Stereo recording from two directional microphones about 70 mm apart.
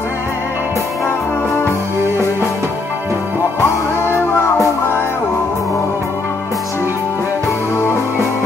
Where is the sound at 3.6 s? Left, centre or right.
Left.